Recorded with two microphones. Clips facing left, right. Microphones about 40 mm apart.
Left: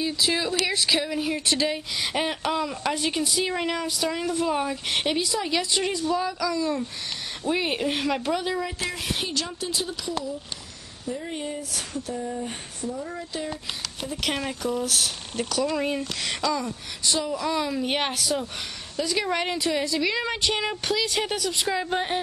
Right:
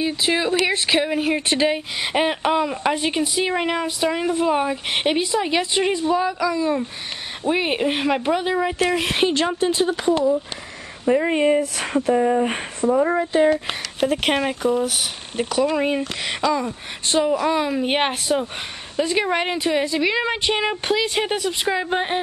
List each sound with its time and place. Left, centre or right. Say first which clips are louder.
0.0 s speech: right 4 dB; right
8.7 s speech: right 9 dB; right
11.1 s speech: right 14 dB; right
13.2 s speech: right 15 dB; right
17.0 s speech: right 7 dB; right